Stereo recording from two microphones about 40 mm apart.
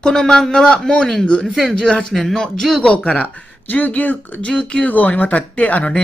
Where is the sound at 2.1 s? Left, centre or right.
Centre.